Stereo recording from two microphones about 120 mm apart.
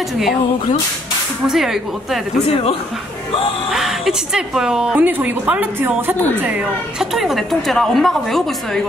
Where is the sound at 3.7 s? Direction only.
Centre (ahead or behind).